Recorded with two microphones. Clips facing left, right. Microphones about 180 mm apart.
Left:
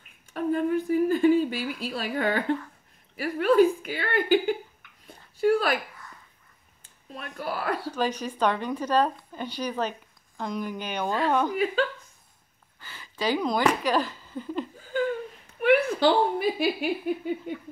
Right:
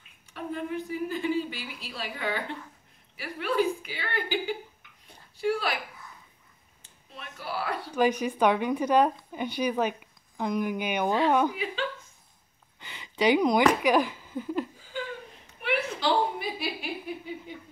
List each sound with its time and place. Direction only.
0.3 s a sound: 45° left (ahead or behind)
3.2 s a woman's voice: 45° left (ahead or behind)
5.0 s a sound: 50° left (ahead or behind)
7.2 s a woman's voice: 45° left (ahead or behind)
7.9 s a woman's voice: 10° right (ahead or behind)
11.5 s a woman's voice: 50° left (ahead or behind)
12.8 s speech: 20° right (ahead or behind)
15.6 s a woman's voice: 55° left (ahead or behind)